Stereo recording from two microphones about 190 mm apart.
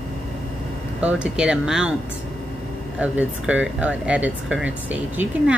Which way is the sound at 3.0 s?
5° right (ahead or behind).